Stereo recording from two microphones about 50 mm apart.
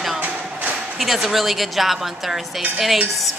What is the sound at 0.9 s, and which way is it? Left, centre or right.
Speech, centre.